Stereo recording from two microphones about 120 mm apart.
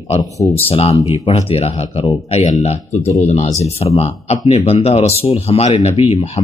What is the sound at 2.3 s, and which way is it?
Speech, 75° left (ahead or behind).